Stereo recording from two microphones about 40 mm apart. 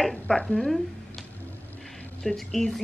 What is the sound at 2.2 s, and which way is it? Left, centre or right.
Speech, centre.